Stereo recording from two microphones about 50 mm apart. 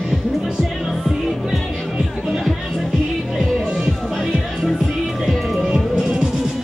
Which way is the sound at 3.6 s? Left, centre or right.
Centre.